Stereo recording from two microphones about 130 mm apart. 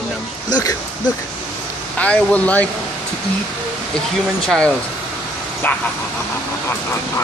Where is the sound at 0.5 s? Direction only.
30° left (ahead or behind).